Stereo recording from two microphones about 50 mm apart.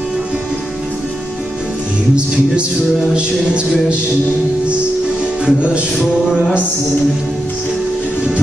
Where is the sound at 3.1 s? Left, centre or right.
Right.